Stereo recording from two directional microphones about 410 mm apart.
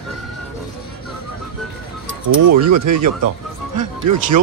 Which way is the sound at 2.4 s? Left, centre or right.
Right.